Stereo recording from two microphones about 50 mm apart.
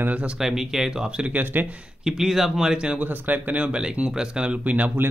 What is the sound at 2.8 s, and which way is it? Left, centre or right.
Speech, right.